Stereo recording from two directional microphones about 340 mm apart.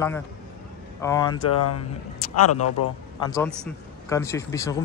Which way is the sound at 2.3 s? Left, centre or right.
Left.